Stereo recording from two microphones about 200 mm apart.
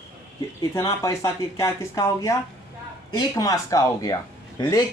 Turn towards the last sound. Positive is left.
turn(degrees=20)  # may be behind; listen again after turning